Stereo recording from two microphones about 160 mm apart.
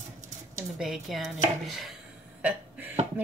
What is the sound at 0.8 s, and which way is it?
Speech, centre (ahead or behind).